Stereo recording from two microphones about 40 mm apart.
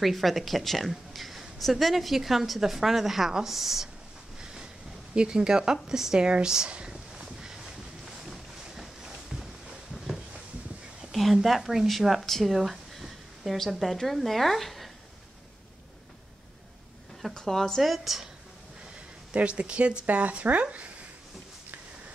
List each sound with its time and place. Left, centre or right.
0.0 s a woman's voice: centre
5.1 s speech: right
7.2 s a sound: centre
8.0 s a sound: centre
11.1 s a sound: centre
11.4 s speech: centre
12.2 s a sound: centre
13.7 s a woman's voice: centre
17.3 s speech: centre
17.8 s a woman's voice: centre
19.3 s speech: right
20.1 s speech: right